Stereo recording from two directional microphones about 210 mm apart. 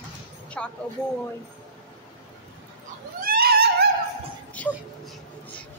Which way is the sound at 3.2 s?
45° right (ahead or behind).